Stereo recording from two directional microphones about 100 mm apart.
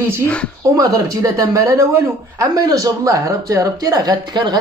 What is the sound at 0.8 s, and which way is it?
Speech, 35° right (ahead or behind).